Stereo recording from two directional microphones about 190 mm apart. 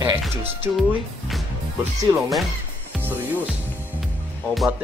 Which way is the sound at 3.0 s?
10° right (ahead or behind).